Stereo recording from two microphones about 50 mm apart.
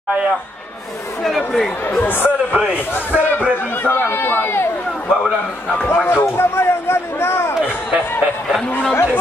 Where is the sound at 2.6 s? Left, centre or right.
Right.